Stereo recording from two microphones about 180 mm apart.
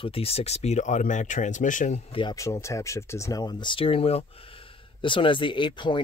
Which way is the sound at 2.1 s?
20° left (ahead or behind).